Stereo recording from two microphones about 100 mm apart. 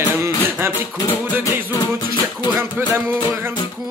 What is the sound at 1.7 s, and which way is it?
Music, 30° left (ahead or behind).